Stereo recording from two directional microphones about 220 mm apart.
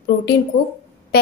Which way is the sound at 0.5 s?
50° left (ahead or behind).